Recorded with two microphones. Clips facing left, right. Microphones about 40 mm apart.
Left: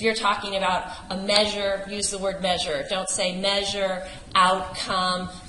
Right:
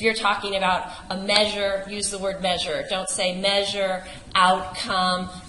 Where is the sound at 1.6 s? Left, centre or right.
Right.